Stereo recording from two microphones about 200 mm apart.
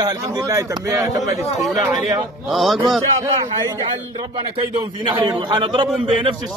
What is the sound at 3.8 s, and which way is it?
A man's voice, 25° right (ahead or behind).